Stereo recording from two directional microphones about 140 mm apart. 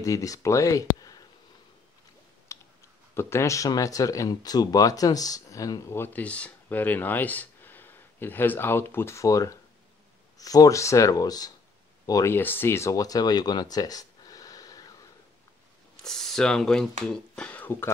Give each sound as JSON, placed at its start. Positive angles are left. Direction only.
{"t": 0.0, "sound": "speech", "side_deg": 25}
{"t": 2.5, "sound": "clicking", "side_deg": 20}
{"t": 3.2, "sound": "speech", "side_deg": 20}
{"t": 16.0, "sound": "speech", "side_deg": 5}